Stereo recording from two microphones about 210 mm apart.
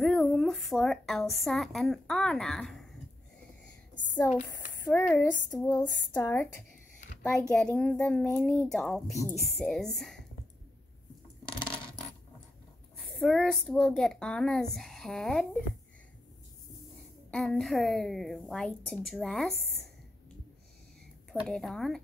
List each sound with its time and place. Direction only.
0.0 s a woman's voice: centre (ahead or behind)
3.9 s a sound: 35° left (ahead or behind)
4.8 s a child's voice: 5° left (ahead or behind)
13.0 s a child's voice: centre (ahead or behind)
17.3 s a child's voice: centre (ahead or behind)
21.3 s a child's voice: centre (ahead or behind)